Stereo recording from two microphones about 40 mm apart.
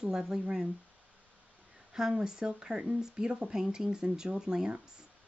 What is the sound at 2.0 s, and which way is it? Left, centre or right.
Speech, centre.